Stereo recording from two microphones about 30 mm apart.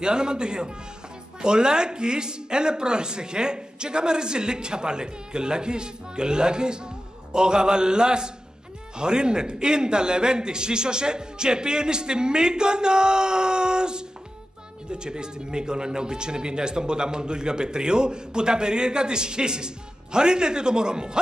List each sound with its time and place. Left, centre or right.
0.0 s speech: right